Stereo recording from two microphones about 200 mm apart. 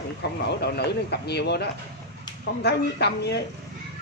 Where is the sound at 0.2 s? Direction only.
55° left (ahead or behind).